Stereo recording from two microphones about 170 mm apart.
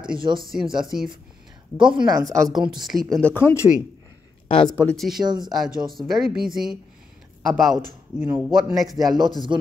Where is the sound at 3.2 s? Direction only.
10° left (ahead or behind).